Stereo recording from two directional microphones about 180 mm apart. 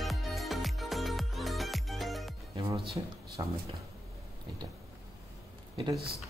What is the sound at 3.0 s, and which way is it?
Speech, 25° right (ahead or behind).